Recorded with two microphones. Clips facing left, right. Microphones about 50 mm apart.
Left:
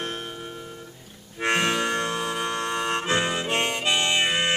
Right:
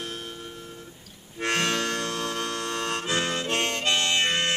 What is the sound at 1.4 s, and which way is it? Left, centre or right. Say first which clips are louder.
Harmonica: left 3 dB; centre.